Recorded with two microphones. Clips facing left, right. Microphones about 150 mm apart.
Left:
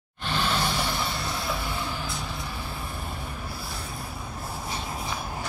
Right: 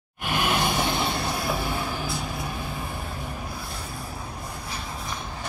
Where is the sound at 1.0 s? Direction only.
55° right (ahead or behind).